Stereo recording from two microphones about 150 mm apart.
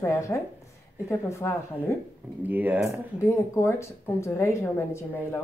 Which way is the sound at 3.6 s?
15° left (ahead or behind).